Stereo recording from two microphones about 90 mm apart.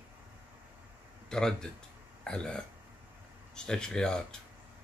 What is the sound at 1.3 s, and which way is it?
Speech, 5° left (ahead or behind).